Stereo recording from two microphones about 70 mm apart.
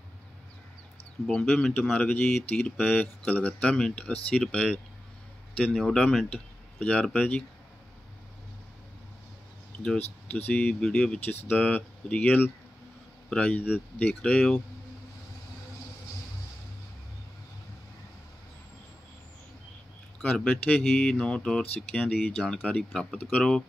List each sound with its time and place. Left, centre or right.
1.2 s speech: centre
5.8 s speech: centre
6.3 s speech: centre
9.9 s speech: left
11.2 s speech: left
20.2 s speech: centre
22.4 s speech: centre
22.7 s speech: centre